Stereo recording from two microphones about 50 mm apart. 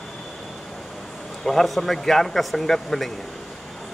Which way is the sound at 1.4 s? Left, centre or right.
Centre.